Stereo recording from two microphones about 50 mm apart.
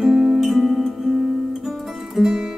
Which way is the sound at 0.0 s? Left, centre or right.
Centre.